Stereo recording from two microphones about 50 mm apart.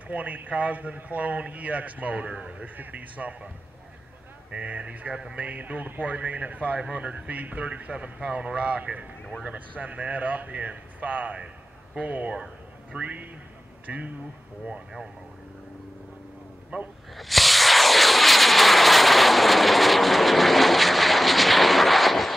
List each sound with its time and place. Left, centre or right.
0.1 s speech: right
4.5 s speech: right
11.3 s a man's voice: centre
14.7 s speech: centre
16.7 s speech: centre
17.1 s vehicle: centre